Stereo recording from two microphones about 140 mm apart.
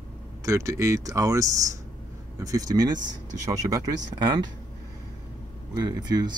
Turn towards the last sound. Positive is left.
turn(degrees=-30)  # may be behind; listen again after turning